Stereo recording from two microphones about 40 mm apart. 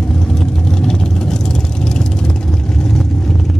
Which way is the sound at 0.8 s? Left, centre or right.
Centre.